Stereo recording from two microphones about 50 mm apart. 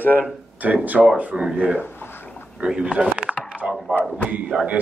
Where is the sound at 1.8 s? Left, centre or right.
Left.